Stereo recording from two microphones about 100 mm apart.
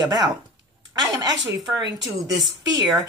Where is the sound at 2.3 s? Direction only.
Centre (ahead or behind).